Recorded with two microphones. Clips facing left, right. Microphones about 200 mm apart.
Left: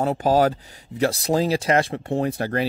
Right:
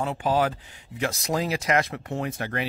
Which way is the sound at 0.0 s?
40° left (ahead or behind).